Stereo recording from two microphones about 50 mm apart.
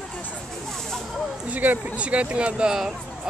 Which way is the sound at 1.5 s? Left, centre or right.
Right.